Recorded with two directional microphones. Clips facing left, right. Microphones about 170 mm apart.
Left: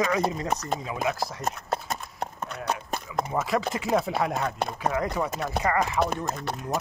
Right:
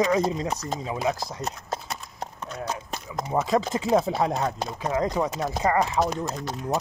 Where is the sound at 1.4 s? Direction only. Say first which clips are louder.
Left 3 dB; 55° left (ahead or behind).